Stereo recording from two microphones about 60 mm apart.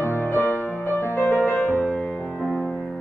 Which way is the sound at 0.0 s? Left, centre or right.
Left.